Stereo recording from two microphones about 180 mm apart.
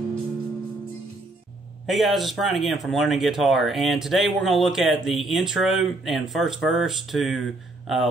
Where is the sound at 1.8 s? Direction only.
Centre (ahead or behind).